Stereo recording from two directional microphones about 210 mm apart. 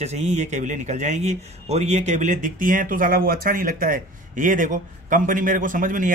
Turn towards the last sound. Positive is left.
turn(degrees=-40)  # may be behind; listen again after turning